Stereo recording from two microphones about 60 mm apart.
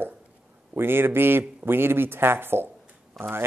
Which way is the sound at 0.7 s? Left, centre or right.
Right.